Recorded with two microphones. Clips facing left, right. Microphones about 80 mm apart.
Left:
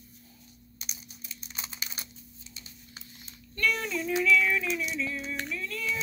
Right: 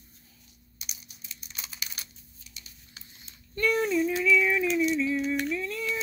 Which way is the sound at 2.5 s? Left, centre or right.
Left.